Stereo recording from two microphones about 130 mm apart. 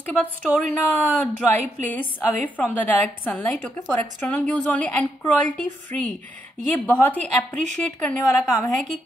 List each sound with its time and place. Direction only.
0.0 s a woman's voice: 15° left (ahead or behind)
8.2 s a woman's voice: 25° left (ahead or behind)